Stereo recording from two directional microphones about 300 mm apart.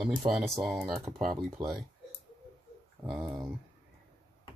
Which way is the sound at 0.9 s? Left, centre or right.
Centre.